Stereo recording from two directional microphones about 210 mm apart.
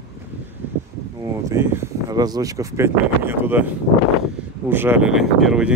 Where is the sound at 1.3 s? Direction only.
10° right (ahead or behind).